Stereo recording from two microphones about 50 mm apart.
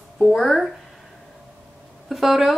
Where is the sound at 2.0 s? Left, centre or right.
Centre.